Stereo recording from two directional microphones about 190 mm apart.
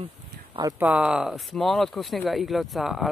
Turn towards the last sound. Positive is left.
turn(degrees=0)  # may be behind; listen again after turning